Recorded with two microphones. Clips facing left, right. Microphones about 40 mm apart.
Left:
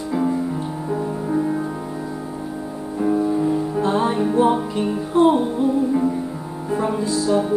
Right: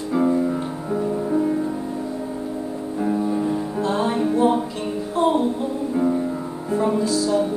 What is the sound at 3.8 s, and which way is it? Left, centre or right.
Music, left.